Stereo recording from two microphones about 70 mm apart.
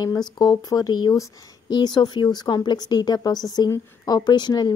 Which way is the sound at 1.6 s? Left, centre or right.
Left.